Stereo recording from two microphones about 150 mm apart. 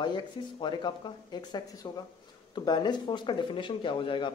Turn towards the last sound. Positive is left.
turn(degrees=35)  # may be behind; listen again after turning